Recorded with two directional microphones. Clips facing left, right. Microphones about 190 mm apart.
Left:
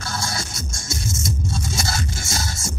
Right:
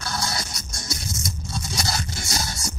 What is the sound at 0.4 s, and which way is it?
Music, 25° left (ahead or behind).